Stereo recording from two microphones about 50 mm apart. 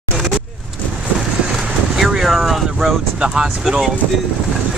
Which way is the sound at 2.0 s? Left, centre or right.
Centre.